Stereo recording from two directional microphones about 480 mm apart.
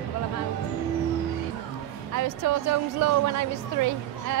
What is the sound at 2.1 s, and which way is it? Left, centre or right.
A woman's voice, right.